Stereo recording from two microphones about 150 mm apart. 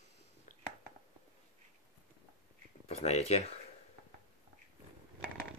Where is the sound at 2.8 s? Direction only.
45° left (ahead or behind).